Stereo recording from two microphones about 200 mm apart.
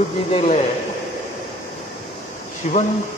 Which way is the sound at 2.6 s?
35° left (ahead or behind).